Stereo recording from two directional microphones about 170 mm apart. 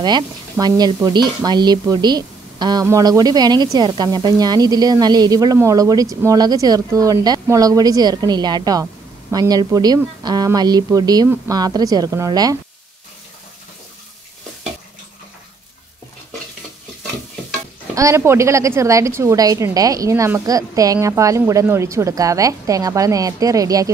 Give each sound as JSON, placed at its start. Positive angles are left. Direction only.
{"t": 0.0, "sound": "speech", "side_deg": -25}
{"t": 17.9, "sound": "speech", "side_deg": -15}